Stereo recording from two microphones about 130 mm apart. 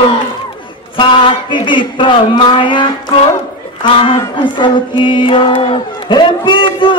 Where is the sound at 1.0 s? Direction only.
40° left (ahead or behind).